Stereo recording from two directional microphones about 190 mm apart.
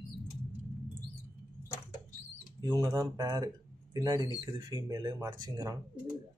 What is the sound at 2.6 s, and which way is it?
Speech, 20° right (ahead or behind).